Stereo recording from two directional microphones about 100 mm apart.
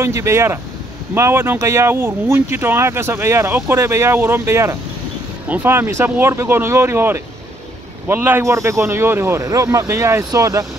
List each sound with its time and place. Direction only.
0.0 s speech: 30° right (ahead or behind)
9.4 s speech: 35° right (ahead or behind)